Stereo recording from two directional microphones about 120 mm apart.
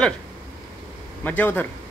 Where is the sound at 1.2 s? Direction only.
15° left (ahead or behind).